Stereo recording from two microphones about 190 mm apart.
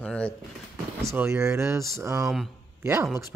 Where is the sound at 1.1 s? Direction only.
15° right (ahead or behind).